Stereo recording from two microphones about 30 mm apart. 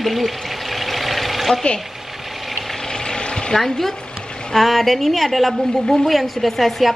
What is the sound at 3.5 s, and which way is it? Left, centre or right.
Speech, centre.